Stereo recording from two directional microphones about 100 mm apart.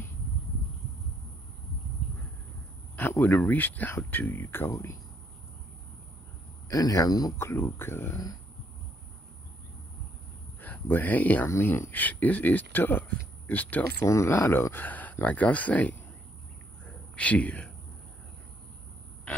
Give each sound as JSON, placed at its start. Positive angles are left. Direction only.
{"t": 3.0, "sound": "speech", "side_deg": 20}
{"t": 6.7, "sound": "speech", "side_deg": 35}
{"t": 7.3, "sound": "speech", "side_deg": 25}
{"t": 10.6, "sound": "speech", "side_deg": 15}
{"t": 14.0, "sound": "speech", "side_deg": 30}
{"t": 16.8, "sound": "a sound", "side_deg": 10}